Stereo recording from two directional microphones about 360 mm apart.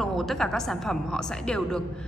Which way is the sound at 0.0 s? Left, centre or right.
Centre.